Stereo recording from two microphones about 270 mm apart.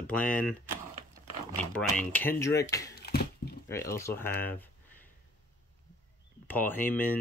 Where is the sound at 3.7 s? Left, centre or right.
Centre.